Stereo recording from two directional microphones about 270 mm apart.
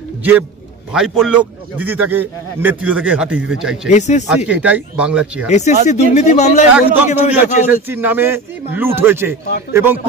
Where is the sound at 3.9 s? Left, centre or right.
Left.